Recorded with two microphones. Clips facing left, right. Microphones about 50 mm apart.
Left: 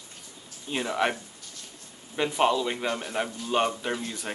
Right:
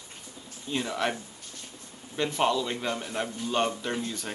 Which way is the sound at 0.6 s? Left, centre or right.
Centre.